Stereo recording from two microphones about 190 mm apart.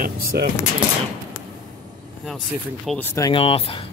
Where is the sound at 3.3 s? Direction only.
30° left (ahead or behind).